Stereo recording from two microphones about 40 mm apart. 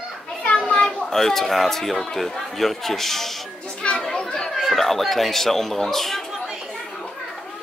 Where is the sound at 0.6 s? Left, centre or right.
Left.